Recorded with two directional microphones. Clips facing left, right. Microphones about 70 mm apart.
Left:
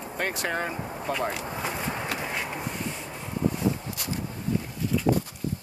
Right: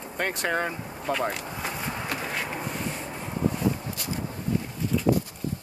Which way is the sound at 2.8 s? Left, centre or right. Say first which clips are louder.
Right 1 dB; right.